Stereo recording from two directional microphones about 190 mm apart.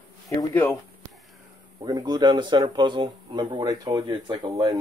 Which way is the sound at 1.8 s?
20° right (ahead or behind).